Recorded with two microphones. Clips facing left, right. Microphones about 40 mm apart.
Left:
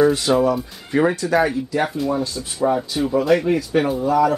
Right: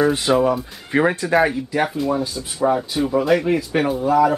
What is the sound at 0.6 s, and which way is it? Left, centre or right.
Speech, centre.